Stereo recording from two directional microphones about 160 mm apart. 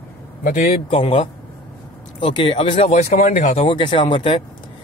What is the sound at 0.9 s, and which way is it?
Speech, 35° left (ahead or behind).